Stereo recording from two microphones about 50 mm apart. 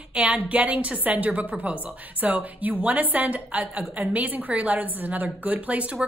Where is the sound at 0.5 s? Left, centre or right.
Right.